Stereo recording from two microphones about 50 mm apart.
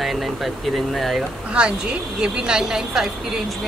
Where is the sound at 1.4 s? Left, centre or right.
Right.